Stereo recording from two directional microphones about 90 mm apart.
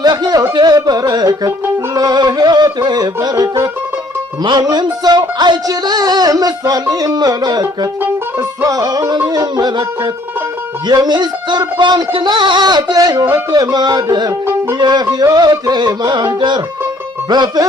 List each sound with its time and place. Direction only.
0.0 s music: 50° right (ahead or behind)
10.9 s music: 50° right (ahead or behind)